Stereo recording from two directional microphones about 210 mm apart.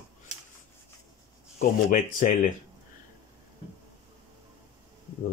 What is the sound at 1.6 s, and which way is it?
Speech, 40° left (ahead or behind).